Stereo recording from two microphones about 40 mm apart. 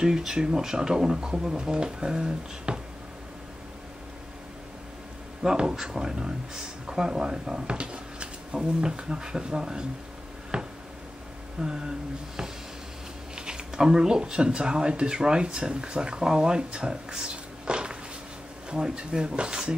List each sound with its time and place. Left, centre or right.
0.0 s speech: centre
5.6 s speech: centre
10.5 s a sound: right
13.5 s speech: centre
17.6 s a sound: right
18.7 s speech: centre